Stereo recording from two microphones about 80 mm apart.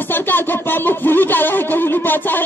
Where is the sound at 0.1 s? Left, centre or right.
Left.